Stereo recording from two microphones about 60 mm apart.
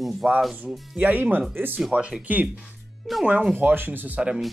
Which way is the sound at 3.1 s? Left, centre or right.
Centre.